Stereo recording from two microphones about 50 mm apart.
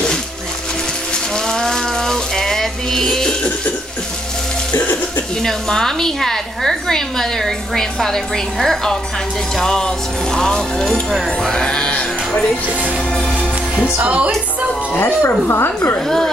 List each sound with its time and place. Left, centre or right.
1.1 s rattle: centre
4.7 s music: left
5.4 s a woman's voice: centre
10.9 s speech: centre
11.2 s a woman's voice: centre
11.9 s music: left
13.9 s speech: right
15.0 s speech: left